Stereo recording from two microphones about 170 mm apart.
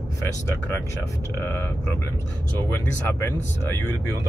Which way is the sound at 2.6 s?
15° left (ahead or behind).